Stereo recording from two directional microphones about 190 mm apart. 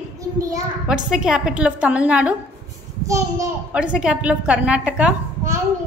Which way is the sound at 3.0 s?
15° right (ahead or behind).